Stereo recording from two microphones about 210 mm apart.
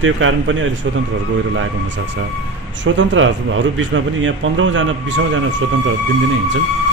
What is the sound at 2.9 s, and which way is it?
A man's voice, 65° right (ahead or behind).